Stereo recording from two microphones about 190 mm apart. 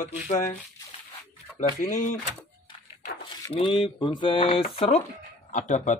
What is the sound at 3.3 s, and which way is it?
Speech, 25° left (ahead or behind).